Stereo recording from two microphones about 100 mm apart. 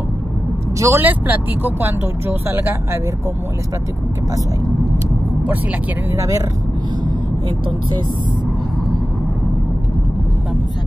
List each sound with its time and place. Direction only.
0.7 s speech: 30° right (ahead or behind)
1.0 s speech: 15° right (ahead or behind)
6.1 s speech: 35° right (ahead or behind)